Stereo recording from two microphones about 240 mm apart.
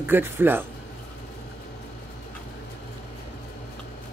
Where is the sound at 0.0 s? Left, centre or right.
Centre.